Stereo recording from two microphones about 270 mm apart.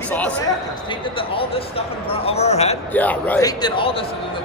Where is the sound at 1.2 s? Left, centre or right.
Centre.